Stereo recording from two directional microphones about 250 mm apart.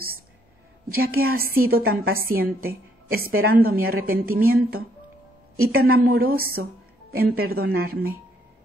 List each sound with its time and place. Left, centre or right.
0.8 s a woman's voice: right